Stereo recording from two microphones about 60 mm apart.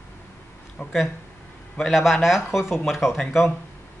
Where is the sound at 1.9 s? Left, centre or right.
Centre.